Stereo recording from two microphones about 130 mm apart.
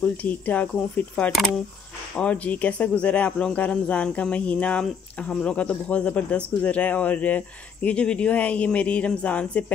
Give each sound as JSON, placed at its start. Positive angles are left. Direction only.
{"t": 0.0, "sound": "speech", "side_deg": 10}